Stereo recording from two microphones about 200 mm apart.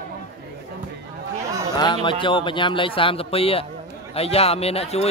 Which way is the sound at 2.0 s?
25° left (ahead or behind).